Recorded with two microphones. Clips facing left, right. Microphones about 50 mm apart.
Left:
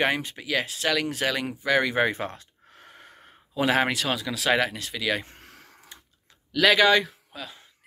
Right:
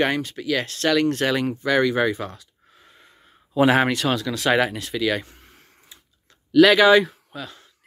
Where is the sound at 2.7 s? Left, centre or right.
Left.